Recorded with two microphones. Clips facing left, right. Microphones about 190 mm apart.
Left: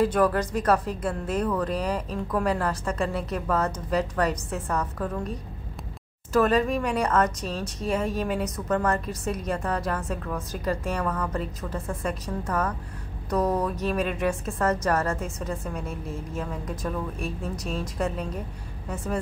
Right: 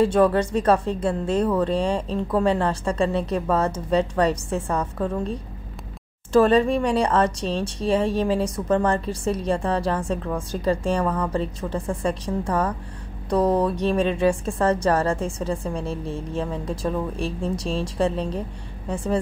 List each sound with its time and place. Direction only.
0.0 s speech: 25° right (ahead or behind)